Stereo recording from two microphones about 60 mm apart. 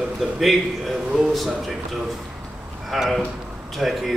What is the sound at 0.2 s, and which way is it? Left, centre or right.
A man's voice, centre.